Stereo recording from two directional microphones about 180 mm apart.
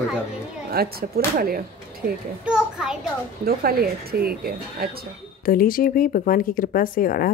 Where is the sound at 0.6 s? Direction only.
60° right (ahead or behind).